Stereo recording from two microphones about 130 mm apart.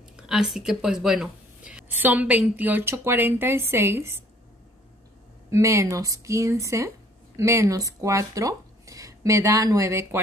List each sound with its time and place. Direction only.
0.3 s a woman's voice: 5° right (ahead or behind)
5.5 s speech: 25° right (ahead or behind)